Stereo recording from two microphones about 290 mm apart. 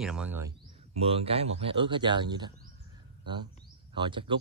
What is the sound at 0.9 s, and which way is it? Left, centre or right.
Speech, centre.